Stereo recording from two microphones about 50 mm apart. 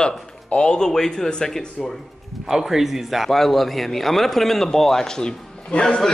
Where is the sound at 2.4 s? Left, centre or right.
Centre.